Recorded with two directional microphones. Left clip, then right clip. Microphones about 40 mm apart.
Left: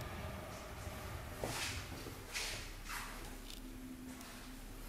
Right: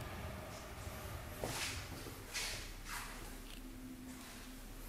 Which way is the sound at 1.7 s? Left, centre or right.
Centre.